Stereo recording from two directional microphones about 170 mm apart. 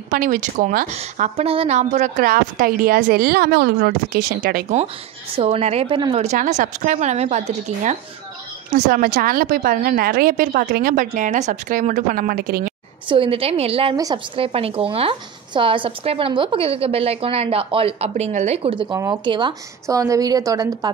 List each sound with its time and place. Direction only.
0.1 s speech: 50° right (ahead or behind)
1.3 s a woman's voice: 35° right (ahead or behind); by 4.7 s 55° right (ahead or behind)
5.4 s a woman's voice: 35° right (ahead or behind)
6.2 s speech: 45° right (ahead or behind)
8.9 s a woman's voice: 60° right (ahead or behind)
13.1 s a woman's voice: 30° right (ahead or behind)